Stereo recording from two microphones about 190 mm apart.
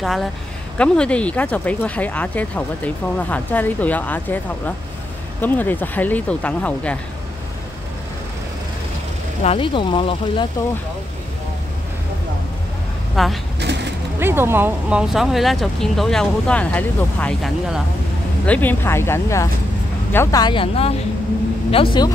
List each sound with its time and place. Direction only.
0.0 s speech: centre (ahead or behind)
9.4 s speech: 30° left (ahead or behind)
13.1 s speech: centre (ahead or behind)
14.2 s speech: 10° right (ahead or behind); by 22.1 s 25° left (ahead or behind)